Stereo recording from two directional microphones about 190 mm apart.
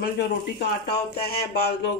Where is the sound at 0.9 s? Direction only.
55° left (ahead or behind).